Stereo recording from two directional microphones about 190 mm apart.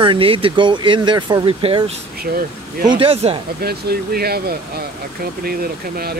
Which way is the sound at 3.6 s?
55° right (ahead or behind).